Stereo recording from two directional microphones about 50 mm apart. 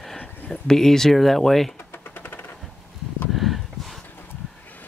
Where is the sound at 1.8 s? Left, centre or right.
Left.